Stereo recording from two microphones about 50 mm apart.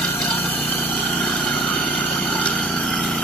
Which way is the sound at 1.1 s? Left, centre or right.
Left.